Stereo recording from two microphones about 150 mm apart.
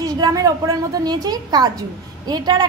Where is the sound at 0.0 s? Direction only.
25° right (ahead or behind).